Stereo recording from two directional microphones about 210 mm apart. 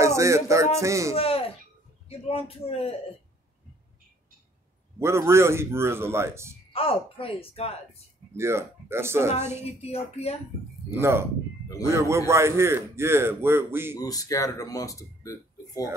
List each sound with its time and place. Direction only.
0.0 s a sound: 15° right (ahead or behind)
0.7 s a man's voice: 15° right (ahead or behind)
1.1 s speech: 25° left (ahead or behind)
4.9 s a man's voice: 10° right (ahead or behind)
6.7 s speech: 25° left (ahead or behind)
8.4 s a man's voice: 10° right (ahead or behind)
9.7 s speech: 30° left (ahead or behind)
10.9 s a man's voice: 10° right (ahead or behind)
13.9 s speech: 15° left (ahead or behind)